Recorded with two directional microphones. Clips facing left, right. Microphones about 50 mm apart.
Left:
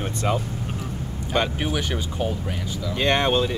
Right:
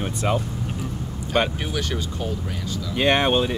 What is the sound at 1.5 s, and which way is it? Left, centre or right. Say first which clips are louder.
Speech: left 1 dB; centre.